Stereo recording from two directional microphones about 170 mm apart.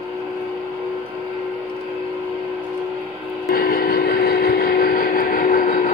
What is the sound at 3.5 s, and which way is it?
Vehicle, 55° left (ahead or behind).